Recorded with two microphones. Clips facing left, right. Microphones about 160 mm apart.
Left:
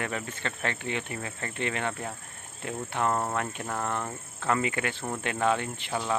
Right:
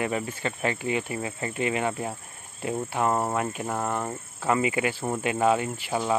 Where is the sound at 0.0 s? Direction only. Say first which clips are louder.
Right 5 dB; 10° right (ahead or behind).